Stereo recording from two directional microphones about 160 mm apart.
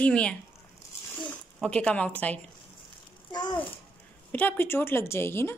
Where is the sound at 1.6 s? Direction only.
5° left (ahead or behind).